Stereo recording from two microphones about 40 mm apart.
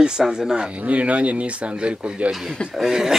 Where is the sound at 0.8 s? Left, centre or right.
Right.